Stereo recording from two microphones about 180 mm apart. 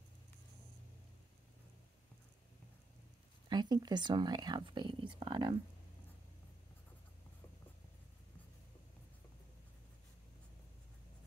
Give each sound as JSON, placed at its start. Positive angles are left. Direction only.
{"t": 3.4, "sound": "speech", "side_deg": -25}